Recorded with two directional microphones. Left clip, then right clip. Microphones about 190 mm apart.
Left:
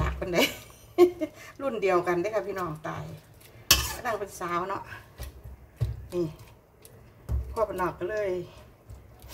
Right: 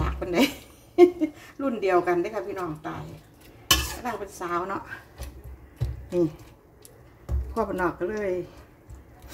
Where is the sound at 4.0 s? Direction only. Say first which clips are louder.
Left 1 dB; 10° right (ahead or behind).